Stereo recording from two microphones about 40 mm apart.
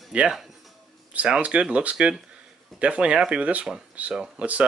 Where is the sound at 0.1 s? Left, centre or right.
Right.